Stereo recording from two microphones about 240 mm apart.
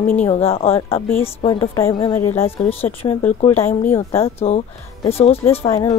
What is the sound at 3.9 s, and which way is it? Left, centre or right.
Speech, centre.